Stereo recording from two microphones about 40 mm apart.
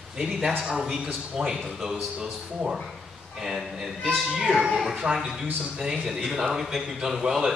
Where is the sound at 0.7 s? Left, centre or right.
Centre.